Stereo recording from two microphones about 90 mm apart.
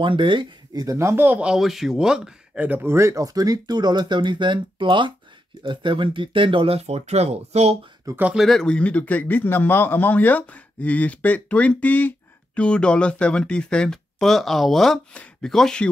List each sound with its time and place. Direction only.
0.0 s speech: 65° right (ahead or behind)
0.8 s speech: 35° right (ahead or behind)
1.4 s speech: 5° right (ahead or behind); by 6.8 s 85° right
8.1 s speech: 40° right (ahead or behind)
8.4 s speech: 5° left (ahead or behind)